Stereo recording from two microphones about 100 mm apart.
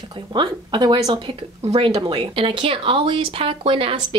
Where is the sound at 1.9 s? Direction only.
55° right (ahead or behind).